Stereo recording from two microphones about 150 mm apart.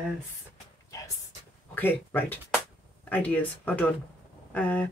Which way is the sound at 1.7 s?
15° left (ahead or behind).